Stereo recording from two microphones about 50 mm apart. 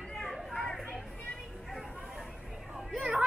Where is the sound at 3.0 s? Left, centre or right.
Right.